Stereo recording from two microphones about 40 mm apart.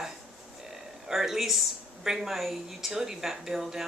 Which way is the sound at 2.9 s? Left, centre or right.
Centre.